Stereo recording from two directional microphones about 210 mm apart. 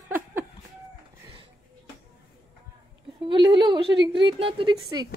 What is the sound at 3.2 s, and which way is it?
A woman's voice, 20° right (ahead or behind).